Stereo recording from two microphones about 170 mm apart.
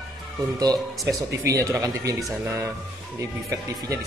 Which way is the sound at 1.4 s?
20° right (ahead or behind).